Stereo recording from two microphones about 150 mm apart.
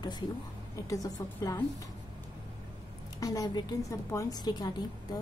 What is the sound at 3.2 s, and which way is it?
A woman's voice, 25° left (ahead or behind).